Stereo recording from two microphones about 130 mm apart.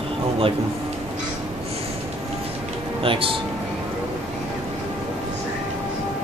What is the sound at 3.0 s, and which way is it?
Speech, 45° right (ahead or behind).